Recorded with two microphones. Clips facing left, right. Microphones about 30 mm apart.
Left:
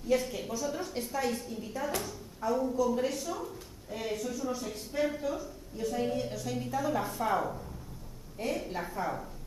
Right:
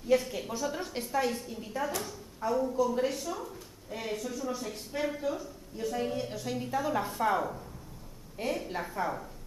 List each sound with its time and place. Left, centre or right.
0.1 s a woman's voice: centre
0.5 s a woman's voice: right
1.1 s a woman's voice: centre